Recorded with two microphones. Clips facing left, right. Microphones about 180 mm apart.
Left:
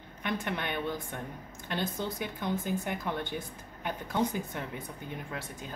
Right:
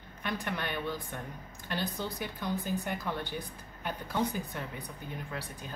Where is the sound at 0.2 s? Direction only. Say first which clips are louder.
Left 2 dB; 20° left (ahead or behind).